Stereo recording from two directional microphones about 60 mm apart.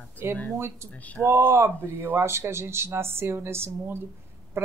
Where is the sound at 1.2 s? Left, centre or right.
Right.